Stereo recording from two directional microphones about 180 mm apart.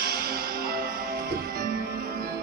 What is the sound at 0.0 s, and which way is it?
Music, 55° right (ahead or behind).